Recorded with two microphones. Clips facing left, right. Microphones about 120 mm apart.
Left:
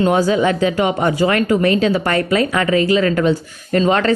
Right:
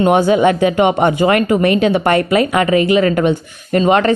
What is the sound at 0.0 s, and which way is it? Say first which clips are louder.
A woman's voice: right 3 dB; 25° right (ahead or behind).